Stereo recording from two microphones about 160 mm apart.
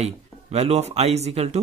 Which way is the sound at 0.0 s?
40° right (ahead or behind).